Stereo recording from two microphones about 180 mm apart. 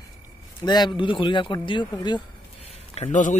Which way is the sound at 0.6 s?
25° left (ahead or behind).